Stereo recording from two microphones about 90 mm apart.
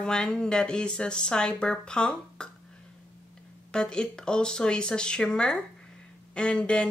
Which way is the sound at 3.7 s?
10° left (ahead or behind).